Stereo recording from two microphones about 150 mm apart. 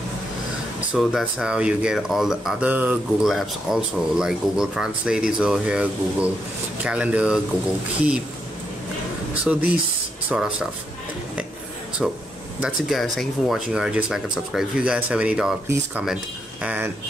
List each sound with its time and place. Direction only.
0.9 s speech: 5° right (ahead or behind)
9.4 s speech: 10° right (ahead or behind)
12.0 s speech: centre (ahead or behind)